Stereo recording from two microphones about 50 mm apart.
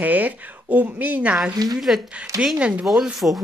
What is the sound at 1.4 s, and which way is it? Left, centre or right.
Speech, centre.